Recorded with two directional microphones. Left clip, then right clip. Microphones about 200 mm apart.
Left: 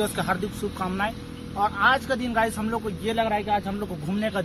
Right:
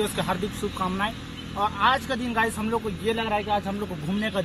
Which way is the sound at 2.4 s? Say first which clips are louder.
Even; 20° left (ahead or behind).